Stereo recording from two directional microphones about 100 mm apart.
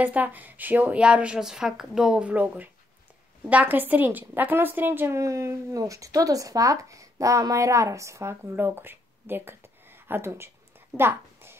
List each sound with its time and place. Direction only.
0.0 s a woman's voice: 15° right (ahead or behind)